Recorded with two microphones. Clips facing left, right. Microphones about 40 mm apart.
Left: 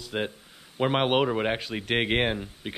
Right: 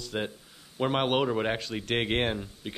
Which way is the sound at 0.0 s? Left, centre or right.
Centre.